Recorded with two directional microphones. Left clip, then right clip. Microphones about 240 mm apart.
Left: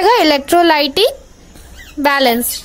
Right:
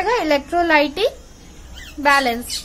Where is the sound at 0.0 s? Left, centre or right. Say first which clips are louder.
Left 7 dB; left.